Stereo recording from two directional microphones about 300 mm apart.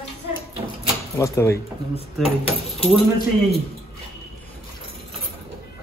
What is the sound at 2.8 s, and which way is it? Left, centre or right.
Speech, centre.